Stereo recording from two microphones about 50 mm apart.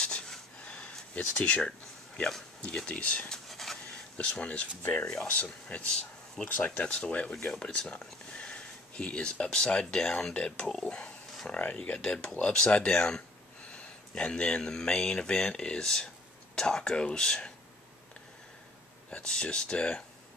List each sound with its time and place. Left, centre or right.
0.0 s a sound: centre
1.3 s speech: left
3.4 s pant: centre
4.4 s speech: left
5.0 s speech: centre
5.3 s speech: left
5.9 s speech: centre
6.5 s speech: left
19.0 s speech: centre